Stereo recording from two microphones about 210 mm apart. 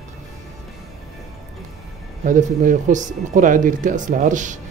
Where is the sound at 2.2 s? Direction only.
35° right (ahead or behind).